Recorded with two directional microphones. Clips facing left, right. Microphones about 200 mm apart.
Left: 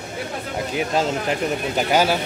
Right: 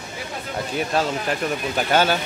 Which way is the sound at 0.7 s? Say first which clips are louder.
Left 1 dB; 20° left (ahead or behind).